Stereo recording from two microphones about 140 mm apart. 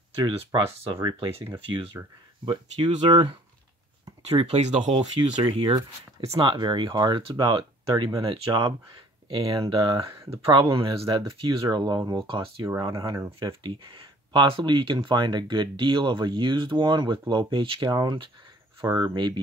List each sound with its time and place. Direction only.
0.2 s speech: 35° right (ahead or behind)
4.3 s speech: 45° right (ahead or behind); by 13.3 s 25° right (ahead or behind)
13.4 s speech: 40° right (ahead or behind)
18.9 s speech: 20° right (ahead or behind)
19.1 s speech: 35° right (ahead or behind)